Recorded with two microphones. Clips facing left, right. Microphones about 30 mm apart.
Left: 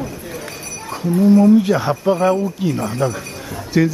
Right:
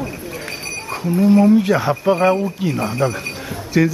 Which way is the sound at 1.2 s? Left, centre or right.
Right.